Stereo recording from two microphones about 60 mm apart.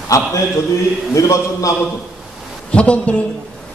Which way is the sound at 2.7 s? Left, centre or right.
Centre.